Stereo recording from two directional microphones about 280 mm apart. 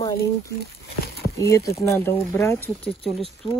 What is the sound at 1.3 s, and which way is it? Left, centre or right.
Speech, centre.